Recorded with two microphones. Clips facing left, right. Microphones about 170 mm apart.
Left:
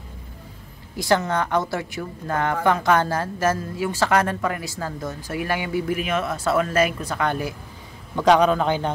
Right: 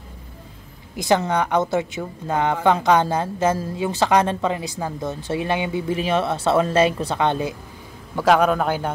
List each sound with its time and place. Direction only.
0.9 s a woman's voice: 20° right (ahead or behind)
8.2 s a man's voice: 5° right (ahead or behind)